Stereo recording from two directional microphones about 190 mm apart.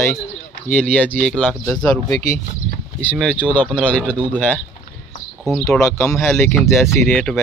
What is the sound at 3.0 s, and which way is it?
Speech, 5° left (ahead or behind).